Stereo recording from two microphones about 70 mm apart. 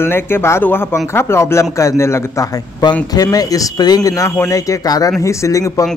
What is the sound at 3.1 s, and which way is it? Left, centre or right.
Speech, left.